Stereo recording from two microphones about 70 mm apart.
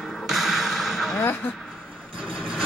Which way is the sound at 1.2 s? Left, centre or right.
Left.